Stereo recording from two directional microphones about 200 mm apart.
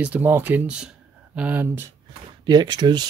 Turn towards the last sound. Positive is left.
turn(degrees=-20)  # may be behind; listen again after turning